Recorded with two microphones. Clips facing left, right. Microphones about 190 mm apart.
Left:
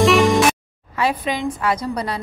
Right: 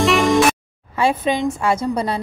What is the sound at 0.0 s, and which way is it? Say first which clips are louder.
Music: left 1 dB; centre (ahead or behind).